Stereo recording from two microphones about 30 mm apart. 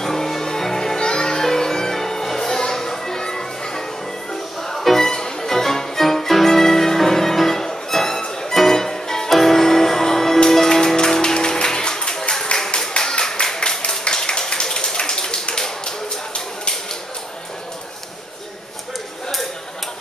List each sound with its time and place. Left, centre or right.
0.0 s music: centre
0.9 s music: left
4.3 s music: centre
5.0 s music: centre
12.9 s a sound: left
13.2 s clapping: centre
14.0 s a sound: left
15.5 s tap: left